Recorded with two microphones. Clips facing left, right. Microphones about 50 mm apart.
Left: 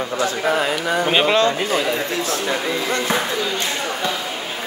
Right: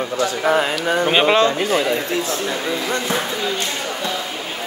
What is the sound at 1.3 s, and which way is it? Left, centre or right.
Speech, right.